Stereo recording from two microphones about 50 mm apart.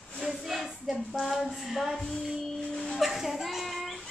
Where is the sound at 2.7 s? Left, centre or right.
Centre.